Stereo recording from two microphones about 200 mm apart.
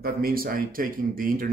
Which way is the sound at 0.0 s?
45° right (ahead or behind).